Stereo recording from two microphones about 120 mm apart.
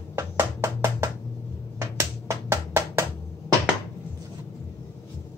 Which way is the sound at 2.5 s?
20° right (ahead or behind).